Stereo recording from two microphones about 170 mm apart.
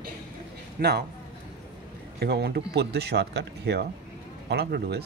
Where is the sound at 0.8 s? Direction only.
60° right (ahead or behind).